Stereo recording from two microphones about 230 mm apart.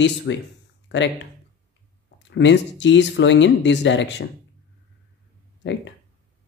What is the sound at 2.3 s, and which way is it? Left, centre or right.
Speech, left.